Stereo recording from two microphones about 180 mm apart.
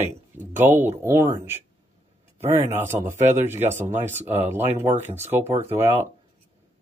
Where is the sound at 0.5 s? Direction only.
10° right (ahead or behind).